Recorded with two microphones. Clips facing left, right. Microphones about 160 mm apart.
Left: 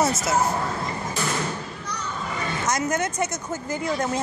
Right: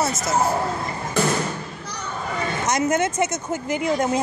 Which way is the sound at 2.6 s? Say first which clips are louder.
Right 4 dB; 20° right (ahead or behind).